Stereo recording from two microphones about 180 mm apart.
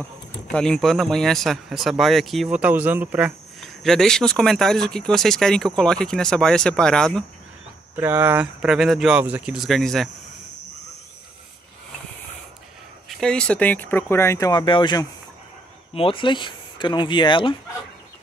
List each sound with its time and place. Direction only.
0.5 s speech: 5° left (ahead or behind)
3.6 s speech: centre (ahead or behind)
7.9 s speech: 10° right (ahead or behind)
13.1 s speech: 5° left (ahead or behind); by 17.6 s 25° left (ahead or behind)